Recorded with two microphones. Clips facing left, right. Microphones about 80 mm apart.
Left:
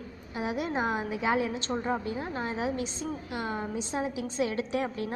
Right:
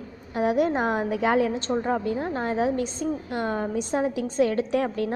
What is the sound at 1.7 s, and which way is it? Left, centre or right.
Speech, centre.